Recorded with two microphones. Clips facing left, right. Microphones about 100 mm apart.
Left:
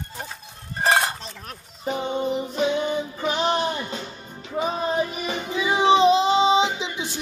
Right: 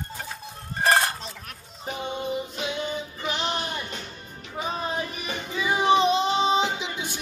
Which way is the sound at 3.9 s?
25° left (ahead or behind).